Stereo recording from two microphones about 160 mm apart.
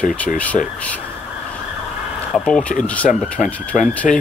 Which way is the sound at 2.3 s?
5° left (ahead or behind).